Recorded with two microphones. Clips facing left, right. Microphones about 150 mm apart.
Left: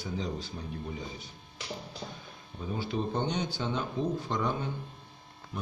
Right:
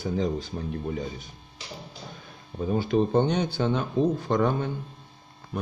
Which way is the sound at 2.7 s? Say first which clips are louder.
Right 9 dB; 55° right (ahead or behind).